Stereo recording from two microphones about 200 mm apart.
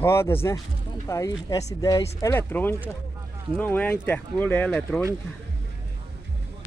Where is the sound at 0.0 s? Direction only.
10° left (ahead or behind).